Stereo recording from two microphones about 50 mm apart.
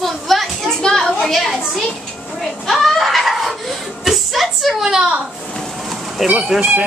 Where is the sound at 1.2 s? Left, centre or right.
Centre.